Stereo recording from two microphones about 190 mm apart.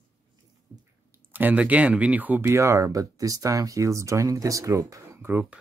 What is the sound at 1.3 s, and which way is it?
Speech, 10° right (ahead or behind).